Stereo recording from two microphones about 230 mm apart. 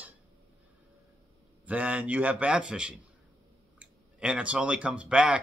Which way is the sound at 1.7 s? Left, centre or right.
Centre.